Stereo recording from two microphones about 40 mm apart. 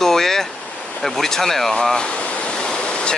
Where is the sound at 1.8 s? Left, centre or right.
Centre.